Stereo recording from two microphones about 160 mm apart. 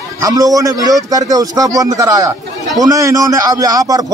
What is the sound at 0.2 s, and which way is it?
A man's voice, 20° right (ahead or behind).